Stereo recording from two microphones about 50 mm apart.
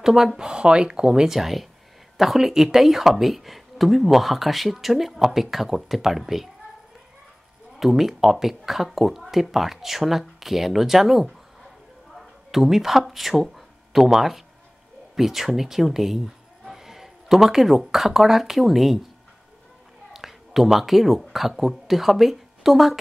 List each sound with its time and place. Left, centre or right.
0.0 s speech: centre
7.8 s speech: centre
20.1 s speech: centre